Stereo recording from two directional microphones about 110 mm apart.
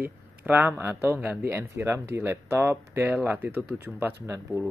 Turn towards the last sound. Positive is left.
turn(degrees=-25)  # may be behind; listen again after turning